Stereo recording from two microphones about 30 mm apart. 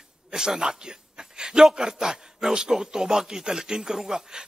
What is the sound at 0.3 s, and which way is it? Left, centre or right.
A man's voice, right.